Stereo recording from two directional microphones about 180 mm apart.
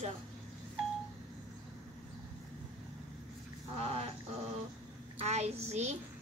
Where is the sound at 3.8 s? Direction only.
35° right (ahead or behind).